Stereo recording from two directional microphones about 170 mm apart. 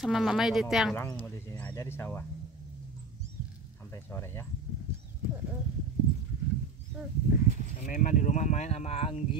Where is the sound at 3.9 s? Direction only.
15° left (ahead or behind).